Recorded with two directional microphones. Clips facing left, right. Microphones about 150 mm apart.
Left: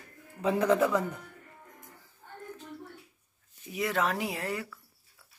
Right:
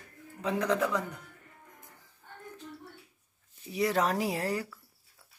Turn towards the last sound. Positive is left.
turn(degrees=-35)  # may be behind; listen again after turning